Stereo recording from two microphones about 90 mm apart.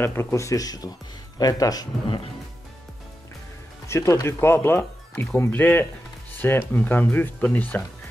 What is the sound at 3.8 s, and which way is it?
Speech, 30° left (ahead or behind).